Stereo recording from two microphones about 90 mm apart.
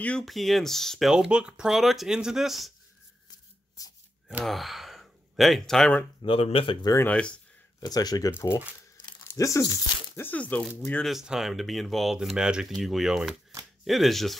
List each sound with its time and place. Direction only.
0.2 s speech: centre (ahead or behind)
3.3 s a sound: 40° left (ahead or behind)
4.5 s speech: centre (ahead or behind)
6.2 s speech: 80° left
7.1 s speech: 10° left (ahead or behind)
7.8 s speech: 45° left (ahead or behind)
8.3 s speech: 25° left (ahead or behind)
9.3 s speech: 35° left (ahead or behind)
10.2 s speech: 15° left (ahead or behind)
11.1 s speech: 5° right (ahead or behind)